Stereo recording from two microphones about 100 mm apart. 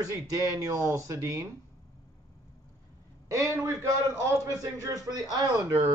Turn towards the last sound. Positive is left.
turn(degrees=-40)  # may be behind; listen again after turning